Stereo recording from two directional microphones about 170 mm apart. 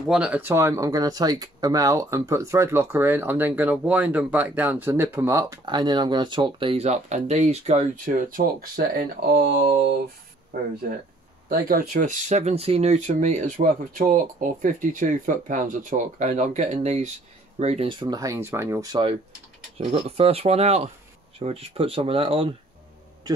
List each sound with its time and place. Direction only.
0.1 s speech: 5° right (ahead or behind); by 9.6 s 70° right (ahead or behind)
10.5 s speech: 55° right (ahead or behind); by 19.1 s 25° right (ahead or behind)
19.8 s speech: 35° right (ahead or behind)